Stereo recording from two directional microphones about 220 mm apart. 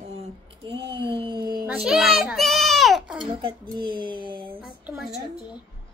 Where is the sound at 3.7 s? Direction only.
20° right (ahead or behind).